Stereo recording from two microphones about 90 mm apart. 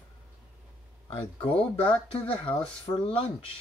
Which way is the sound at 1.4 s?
85° left.